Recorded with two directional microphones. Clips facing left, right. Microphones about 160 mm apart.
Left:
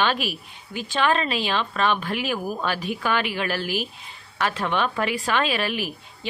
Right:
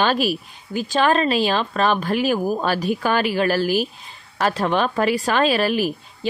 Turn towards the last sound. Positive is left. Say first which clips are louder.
# right 7 dB
turn(degrees=-40)  # may be behind; listen again after turning